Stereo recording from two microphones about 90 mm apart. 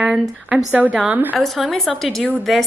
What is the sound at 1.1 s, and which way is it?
Speech, 20° right (ahead or behind).